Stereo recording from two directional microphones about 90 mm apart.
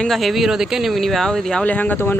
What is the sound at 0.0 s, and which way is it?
Speech, centre (ahead or behind).